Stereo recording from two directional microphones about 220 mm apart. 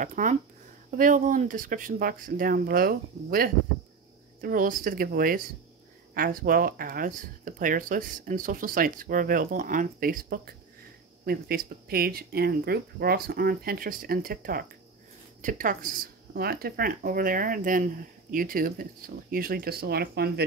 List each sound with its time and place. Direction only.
0.0 s speech: 35° right (ahead or behind)